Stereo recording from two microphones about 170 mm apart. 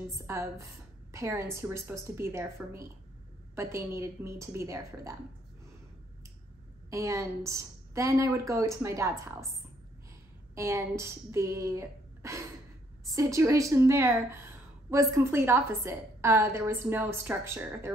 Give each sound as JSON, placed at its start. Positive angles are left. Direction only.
{"t": 0.3, "sound": "a woman's voice", "side_deg": -15}
{"t": 6.9, "sound": "a woman's voice", "side_deg": -15}